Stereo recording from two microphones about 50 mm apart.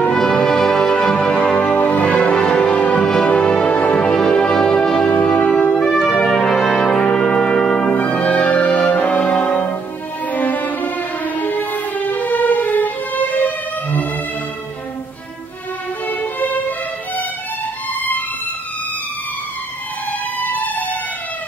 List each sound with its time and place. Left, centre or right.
0.0 s music: left
0.3 s music: centre; by 5.8 s left
5.8 s music: centre
6.4 s brass instrument: centre
8.1 s music: left
10.3 s violin: left
16.1 s violin: left
20.3 s music: left